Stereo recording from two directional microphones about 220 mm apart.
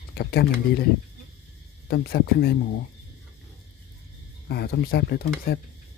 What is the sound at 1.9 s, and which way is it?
Speech, 45° left (ahead or behind).